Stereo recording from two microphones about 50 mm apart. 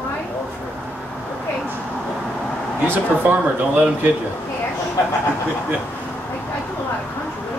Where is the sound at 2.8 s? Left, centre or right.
Right.